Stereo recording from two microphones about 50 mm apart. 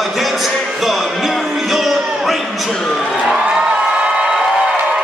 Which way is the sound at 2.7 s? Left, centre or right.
Centre.